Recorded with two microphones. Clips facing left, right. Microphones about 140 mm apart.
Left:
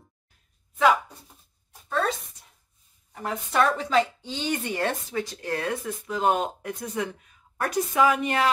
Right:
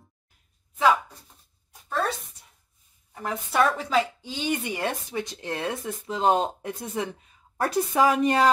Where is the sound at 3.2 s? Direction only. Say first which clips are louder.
Even; centre (ahead or behind).